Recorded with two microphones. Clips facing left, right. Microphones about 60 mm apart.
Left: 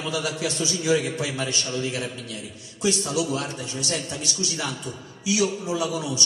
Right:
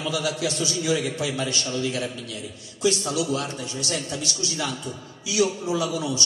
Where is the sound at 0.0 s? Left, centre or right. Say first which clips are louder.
Right 1 dB; left.